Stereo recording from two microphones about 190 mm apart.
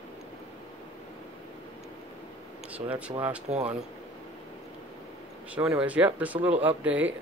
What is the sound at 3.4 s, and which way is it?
Speech, 35° right (ahead or behind).